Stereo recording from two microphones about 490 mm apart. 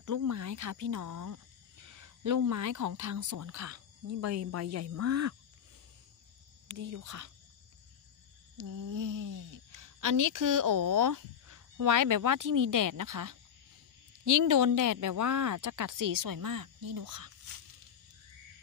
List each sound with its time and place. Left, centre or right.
0.0 s speech: right
6.8 s speech: right
8.5 s speech: right